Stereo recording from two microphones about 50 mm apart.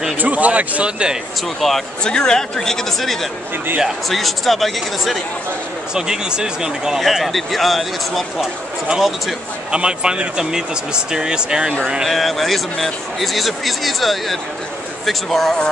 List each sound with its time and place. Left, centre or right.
0.2 s speech: right
2.0 s speech: centre
5.9 s speech: centre
7.0 s speech: centre
8.4 s speech: centre
12.0 s speech: centre